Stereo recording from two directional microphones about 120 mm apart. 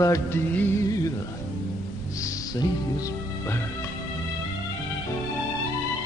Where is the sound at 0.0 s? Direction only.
25° left (ahead or behind).